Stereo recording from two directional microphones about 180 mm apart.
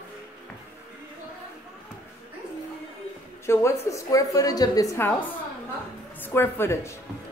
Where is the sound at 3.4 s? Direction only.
15° left (ahead or behind).